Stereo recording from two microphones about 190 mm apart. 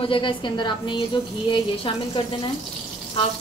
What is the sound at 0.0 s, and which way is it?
A woman's voice, 25° left (ahead or behind).